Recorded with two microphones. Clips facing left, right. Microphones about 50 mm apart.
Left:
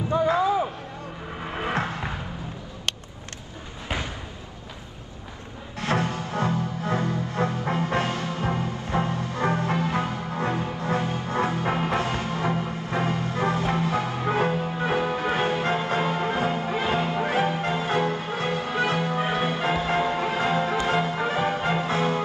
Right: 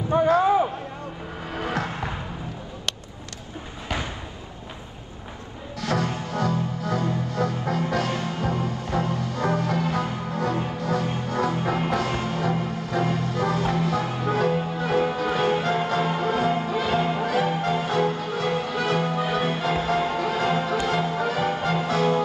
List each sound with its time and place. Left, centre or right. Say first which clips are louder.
0.1 s basketball bounce: right 3 dB; right
1.6 s music: left 1 dB; left
5.8 s music: even; left